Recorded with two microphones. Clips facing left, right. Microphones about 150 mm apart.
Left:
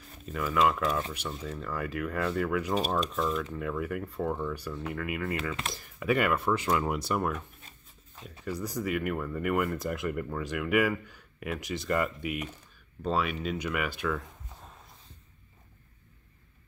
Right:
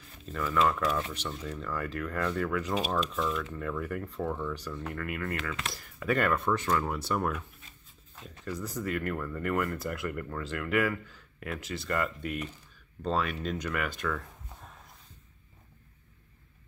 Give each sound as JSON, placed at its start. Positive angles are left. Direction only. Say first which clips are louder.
{"t": 0.3, "sound": "speech", "louder": "left 1 dB", "side_deg": 10}
{"t": 2.8, "sound": "speech", "louder": "left 1 dB", "side_deg": 35}
{"t": 3.1, "sound": "speech", "louder": "left 2 dB", "side_deg": 0}
{"t": 5.4, "sound": "speech", "louder": "left 2 dB", "side_deg": 30}
{"t": 5.9, "sound": "speech", "louder": "left 1 dB", "side_deg": 10}
{"t": 8.2, "sound": "speech", "louder": "left 2 dB", "side_deg": 10}
{"t": 13.0, "sound": "speech", "louder": "left 1 dB", "side_deg": 5}